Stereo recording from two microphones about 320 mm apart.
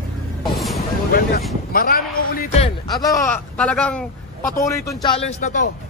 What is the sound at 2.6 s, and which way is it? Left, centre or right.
Speech, centre.